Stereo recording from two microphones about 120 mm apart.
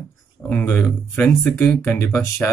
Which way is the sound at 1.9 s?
15° left (ahead or behind).